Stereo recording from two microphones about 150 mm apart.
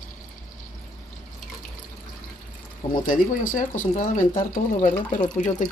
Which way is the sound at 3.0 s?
60° left (ahead or behind).